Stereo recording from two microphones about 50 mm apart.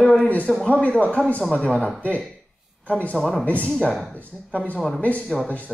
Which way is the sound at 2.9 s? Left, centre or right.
Left.